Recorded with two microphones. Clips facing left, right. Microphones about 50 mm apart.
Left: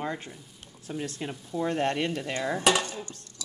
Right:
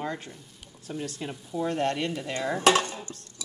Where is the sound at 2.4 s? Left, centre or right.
Centre.